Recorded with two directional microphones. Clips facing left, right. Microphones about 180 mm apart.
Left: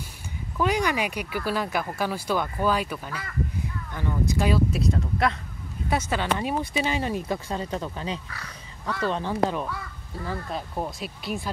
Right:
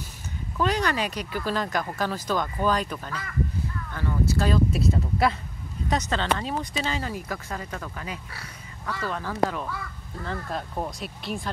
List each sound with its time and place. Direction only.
0.6 s speech: 10° left (ahead or behind)
4.6 s speech: centre (ahead or behind)
5.9 s speech: 10° left (ahead or behind)
9.7 s speech: centre (ahead or behind)